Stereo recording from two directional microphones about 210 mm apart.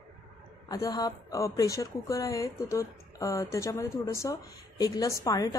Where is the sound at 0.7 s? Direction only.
15° left (ahead or behind).